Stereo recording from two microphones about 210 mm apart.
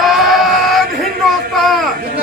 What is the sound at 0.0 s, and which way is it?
Music, centre (ahead or behind).